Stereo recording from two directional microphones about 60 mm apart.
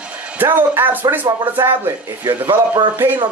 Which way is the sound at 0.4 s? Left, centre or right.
Right.